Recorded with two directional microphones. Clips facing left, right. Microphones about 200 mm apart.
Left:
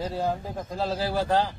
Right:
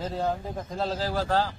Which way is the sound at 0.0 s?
5° left (ahead or behind).